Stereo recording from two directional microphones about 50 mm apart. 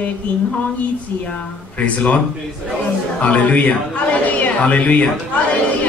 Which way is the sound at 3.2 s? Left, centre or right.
Left.